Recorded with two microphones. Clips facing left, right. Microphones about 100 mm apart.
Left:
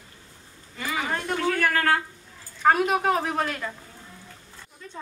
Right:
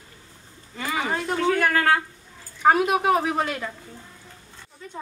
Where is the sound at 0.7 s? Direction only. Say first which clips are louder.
Right 2 dB; 20° right (ahead or behind).